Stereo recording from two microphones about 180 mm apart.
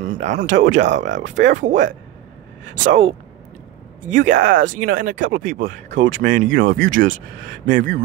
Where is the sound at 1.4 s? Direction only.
45° right (ahead or behind).